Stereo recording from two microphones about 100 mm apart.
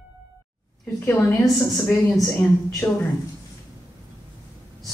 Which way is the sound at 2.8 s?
25° left (ahead or behind).